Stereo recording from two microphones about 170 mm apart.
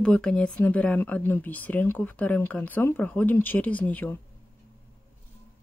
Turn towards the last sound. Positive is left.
turn(degrees=10)  # may be behind; listen again after turning